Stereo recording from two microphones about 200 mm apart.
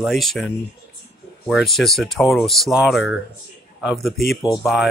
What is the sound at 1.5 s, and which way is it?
Speech, centre (ahead or behind).